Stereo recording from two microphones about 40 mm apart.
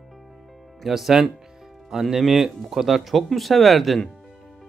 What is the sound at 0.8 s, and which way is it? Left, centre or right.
Speech, centre.